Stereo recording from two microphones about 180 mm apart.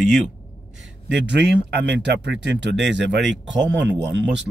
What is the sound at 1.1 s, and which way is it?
Speech, 70° right (ahead or behind).